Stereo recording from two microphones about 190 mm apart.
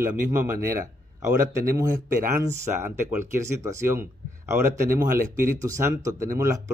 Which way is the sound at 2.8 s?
15° right (ahead or behind).